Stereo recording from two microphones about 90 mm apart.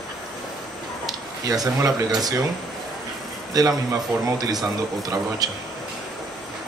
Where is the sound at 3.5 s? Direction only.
45° right (ahead or behind).